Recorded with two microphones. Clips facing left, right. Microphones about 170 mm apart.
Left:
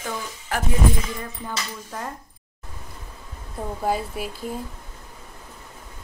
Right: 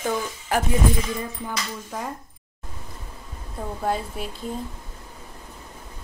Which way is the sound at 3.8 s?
5° left (ahead or behind).